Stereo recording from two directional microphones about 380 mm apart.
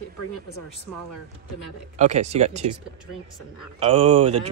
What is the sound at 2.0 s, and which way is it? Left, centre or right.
Speech, centre.